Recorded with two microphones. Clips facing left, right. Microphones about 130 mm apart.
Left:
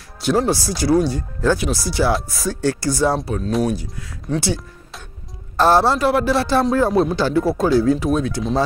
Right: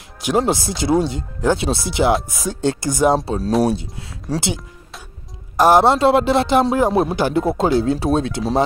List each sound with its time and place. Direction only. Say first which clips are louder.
0.2 s speech: even; 15° right (ahead or behind)
3.2 s speech: right 3 dB; 35° right (ahead or behind)
5.6 s speech: right 2 dB; 15° right (ahead or behind)